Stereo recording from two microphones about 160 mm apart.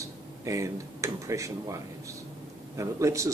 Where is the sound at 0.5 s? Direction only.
20° right (ahead or behind).